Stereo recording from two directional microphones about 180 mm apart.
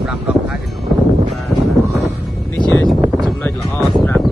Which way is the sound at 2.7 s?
5° left (ahead or behind).